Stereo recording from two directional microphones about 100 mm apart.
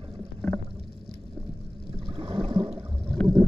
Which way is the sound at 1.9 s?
80° right.